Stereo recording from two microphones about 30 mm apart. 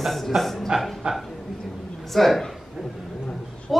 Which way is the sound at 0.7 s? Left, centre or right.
Right.